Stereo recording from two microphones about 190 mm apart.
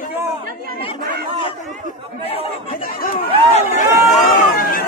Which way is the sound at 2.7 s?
45° left (ahead or behind).